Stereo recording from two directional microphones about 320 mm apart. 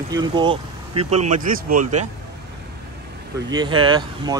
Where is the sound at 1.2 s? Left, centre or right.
Right.